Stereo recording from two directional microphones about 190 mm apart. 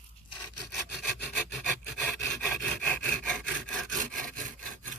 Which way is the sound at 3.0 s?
5° left (ahead or behind).